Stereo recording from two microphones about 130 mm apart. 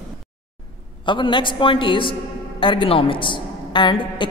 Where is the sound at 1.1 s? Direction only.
40° left (ahead or behind).